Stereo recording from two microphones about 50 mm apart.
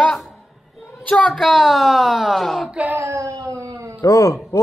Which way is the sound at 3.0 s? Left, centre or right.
Right.